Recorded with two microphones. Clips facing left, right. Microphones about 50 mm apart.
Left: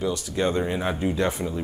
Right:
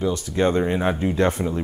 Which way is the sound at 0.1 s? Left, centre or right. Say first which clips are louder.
Right 4 dB; right.